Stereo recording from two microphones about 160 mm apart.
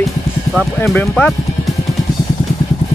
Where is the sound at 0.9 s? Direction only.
10° left (ahead or behind).